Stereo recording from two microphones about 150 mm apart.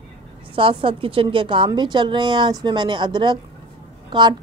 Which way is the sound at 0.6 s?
35° right (ahead or behind).